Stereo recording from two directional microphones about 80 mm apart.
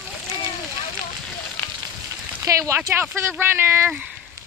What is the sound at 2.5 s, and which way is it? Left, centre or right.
Speech, right.